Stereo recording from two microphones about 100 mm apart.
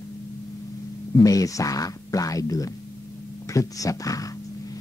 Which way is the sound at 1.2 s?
35° left (ahead or behind).